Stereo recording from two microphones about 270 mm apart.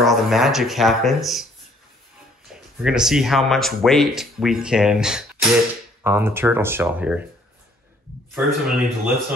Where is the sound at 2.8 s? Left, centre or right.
Centre.